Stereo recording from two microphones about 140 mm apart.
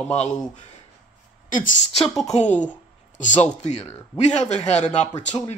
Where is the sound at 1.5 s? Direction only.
70° left (ahead or behind).